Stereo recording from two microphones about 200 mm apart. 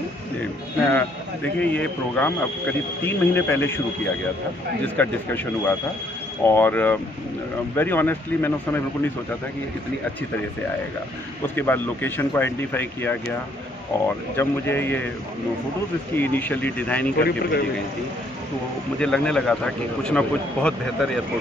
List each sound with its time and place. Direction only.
1.6 s speech: 5° left (ahead or behind)
4.8 s speech: 10° left (ahead or behind)
11.4 s speech: 10° left (ahead or behind)
16.2 s speech: 10° left (ahead or behind)
17.2 s speech: 50° left (ahead or behind)
18.9 s speech: 5° left (ahead or behind)